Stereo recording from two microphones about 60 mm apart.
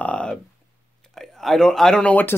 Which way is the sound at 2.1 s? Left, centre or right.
Left.